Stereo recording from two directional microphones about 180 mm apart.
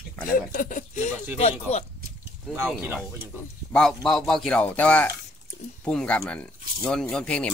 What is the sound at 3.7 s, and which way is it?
Speech, 5° left (ahead or behind).